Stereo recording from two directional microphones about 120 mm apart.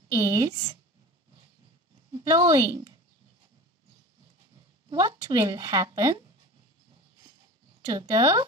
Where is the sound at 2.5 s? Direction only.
30° right (ahead or behind).